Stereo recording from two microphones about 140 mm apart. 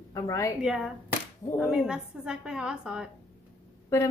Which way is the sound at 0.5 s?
5° right (ahead or behind).